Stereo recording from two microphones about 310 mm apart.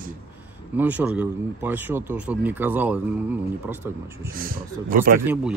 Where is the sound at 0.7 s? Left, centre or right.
Centre.